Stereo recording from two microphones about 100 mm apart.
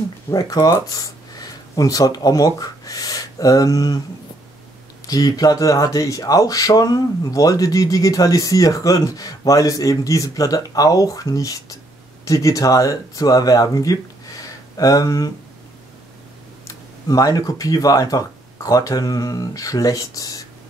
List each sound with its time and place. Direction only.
0.3 s speech: 40° left (ahead or behind)
5.0 s speech: 40° left (ahead or behind)
16.6 s speech: 35° left (ahead or behind)